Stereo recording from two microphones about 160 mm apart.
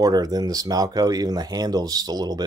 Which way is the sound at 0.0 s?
25° right (ahead or behind).